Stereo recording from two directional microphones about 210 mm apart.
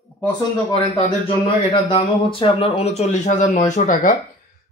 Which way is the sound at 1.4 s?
25° left (ahead or behind).